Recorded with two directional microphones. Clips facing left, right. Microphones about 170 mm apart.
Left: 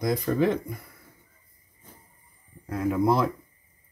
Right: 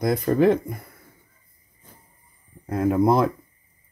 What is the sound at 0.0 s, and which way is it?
Speech, 55° right (ahead or behind).